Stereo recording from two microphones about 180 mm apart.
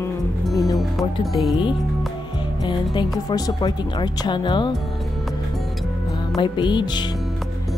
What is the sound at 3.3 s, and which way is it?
Speech, 20° left (ahead or behind).